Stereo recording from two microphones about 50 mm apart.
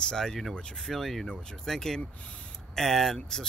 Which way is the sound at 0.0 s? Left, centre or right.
Centre.